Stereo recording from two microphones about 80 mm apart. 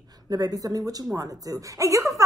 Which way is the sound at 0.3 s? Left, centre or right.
Right.